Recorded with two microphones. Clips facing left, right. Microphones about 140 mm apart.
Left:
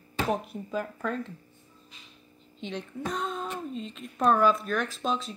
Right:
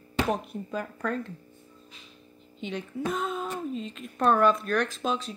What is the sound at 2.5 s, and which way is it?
A woman's voice, 5° right (ahead or behind).